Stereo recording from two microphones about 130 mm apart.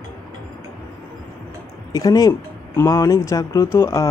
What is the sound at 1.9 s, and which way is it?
Speech, 30° left (ahead or behind).